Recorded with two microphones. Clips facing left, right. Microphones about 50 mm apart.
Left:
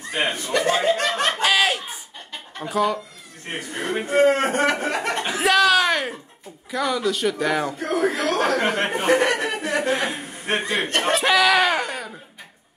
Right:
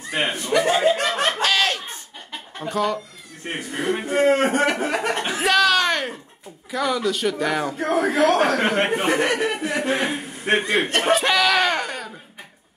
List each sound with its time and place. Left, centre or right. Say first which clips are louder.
0.2 s a man's voice: right 2 dB; centre
0.8 s snicker: right 1 dB; centre
1.3 s snicker: left 1 dB; centre
2.6 s speech: left 1 dB; centre
4.1 s speech: left 1 dB; centre
7.8 s a man's voice: right 7 dB; right
8.9 s chuckle: left 1 dB; centre
10.6 s laughter: right 2 dB; centre